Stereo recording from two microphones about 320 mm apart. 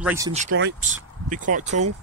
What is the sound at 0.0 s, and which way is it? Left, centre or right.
Speech, centre.